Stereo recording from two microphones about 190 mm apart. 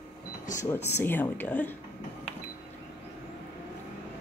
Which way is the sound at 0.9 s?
10° left (ahead or behind).